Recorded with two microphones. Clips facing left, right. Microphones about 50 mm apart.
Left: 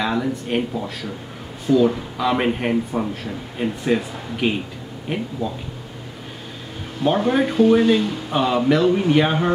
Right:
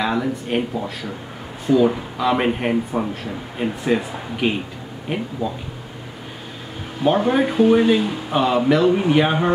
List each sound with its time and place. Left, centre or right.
0.0 s speech: centre
1.7 s speech: centre
2.1 s speech: centre
7.0 s speech: centre